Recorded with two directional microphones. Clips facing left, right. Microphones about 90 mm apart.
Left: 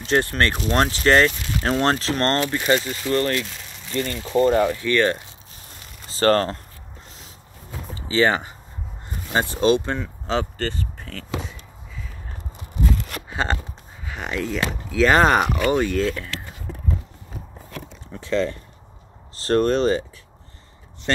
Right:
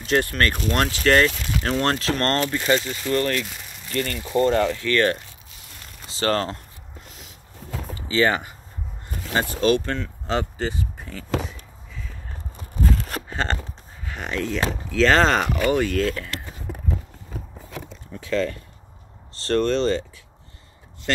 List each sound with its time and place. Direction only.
0.0 s speech: 30° left (ahead or behind)
2.8 s speech: centre (ahead or behind)
3.3 s a sound: 5° right (ahead or behind)
3.9 s speech: 15° left (ahead or behind)
6.0 s speech: 45° left (ahead or behind)
7.9 s a sound: 30° left (ahead or behind)
9.3 s speech: 25° left (ahead or behind)
10.6 s speech: 15° right (ahead or behind)
13.3 s speech: 5° left (ahead or behind)
14.0 s a sound: 5° left (ahead or behind)
14.7 s speech: 10° left (ahead or behind)
16.1 s a sound: centre (ahead or behind)
18.2 s speech: 30° left (ahead or behind)
19.4 s speech: 45° left (ahead or behind)